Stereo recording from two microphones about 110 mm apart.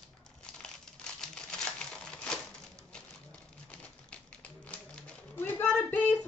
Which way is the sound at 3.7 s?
10° left (ahead or behind).